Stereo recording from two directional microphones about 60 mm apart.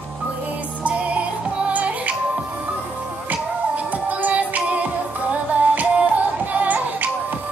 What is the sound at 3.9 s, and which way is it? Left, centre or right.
Music, right.